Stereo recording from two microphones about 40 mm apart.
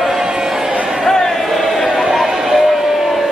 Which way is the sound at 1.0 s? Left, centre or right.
Centre.